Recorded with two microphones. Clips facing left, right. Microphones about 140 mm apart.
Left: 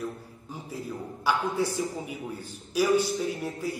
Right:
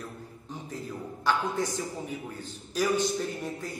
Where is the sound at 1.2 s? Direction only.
10° left (ahead or behind).